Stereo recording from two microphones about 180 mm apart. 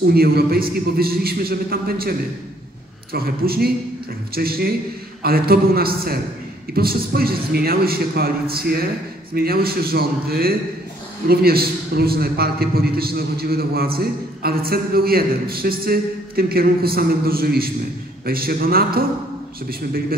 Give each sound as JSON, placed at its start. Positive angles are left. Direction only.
{"t": 0.0, "sound": "a man's voice", "side_deg": -60}